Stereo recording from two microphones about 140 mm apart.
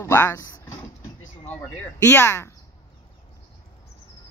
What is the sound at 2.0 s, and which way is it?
Speech, 20° left (ahead or behind).